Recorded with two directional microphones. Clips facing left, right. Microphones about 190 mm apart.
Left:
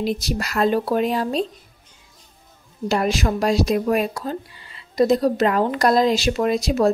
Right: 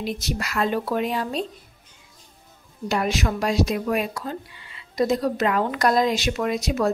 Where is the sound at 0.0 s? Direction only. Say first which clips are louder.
Left 5 dB; 35° left (ahead or behind).